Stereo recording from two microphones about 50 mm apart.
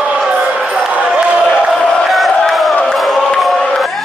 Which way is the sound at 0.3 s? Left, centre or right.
Right.